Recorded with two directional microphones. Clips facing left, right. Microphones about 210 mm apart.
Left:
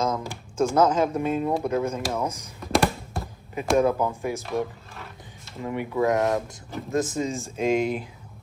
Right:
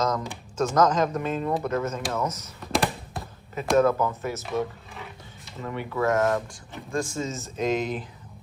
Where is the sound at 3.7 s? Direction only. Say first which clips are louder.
Even; 10° left (ahead or behind).